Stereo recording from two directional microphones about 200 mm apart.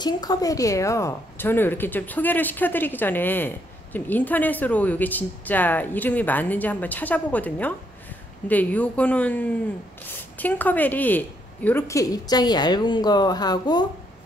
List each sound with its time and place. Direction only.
0.0 s a woman's voice: 20° left (ahead or behind)